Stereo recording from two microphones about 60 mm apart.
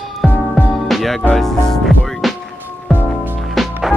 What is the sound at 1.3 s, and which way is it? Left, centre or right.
Speech, centre.